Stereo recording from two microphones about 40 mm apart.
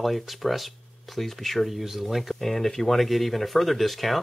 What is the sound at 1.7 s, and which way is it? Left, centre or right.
Speech, centre.